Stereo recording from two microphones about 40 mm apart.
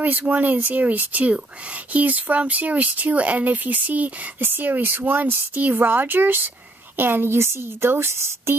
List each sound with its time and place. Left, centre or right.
0.0 s speech: right
7.0 s a woman's voice: right